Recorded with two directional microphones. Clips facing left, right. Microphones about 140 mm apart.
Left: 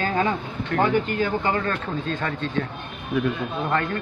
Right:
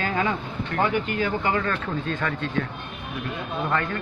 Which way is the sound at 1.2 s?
35° left (ahead or behind).